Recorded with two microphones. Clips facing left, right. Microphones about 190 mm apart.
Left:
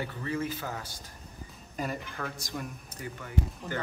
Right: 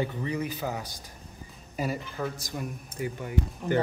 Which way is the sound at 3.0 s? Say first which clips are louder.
Right 4 dB; 20° right (ahead or behind).